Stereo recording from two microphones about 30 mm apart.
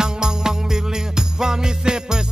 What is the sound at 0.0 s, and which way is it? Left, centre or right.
Music, right.